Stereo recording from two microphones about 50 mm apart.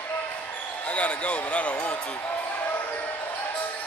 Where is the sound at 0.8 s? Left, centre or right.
Left.